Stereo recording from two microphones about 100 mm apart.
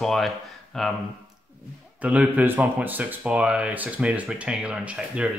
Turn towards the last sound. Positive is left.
turn(degrees=-10)  # may be behind; listen again after turning